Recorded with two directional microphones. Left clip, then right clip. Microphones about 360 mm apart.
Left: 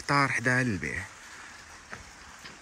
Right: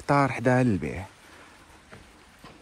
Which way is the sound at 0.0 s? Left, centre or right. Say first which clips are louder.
Right 2 dB; centre.